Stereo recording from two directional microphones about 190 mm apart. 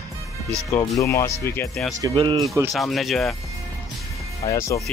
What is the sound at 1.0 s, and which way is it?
Speech, 15° left (ahead or behind).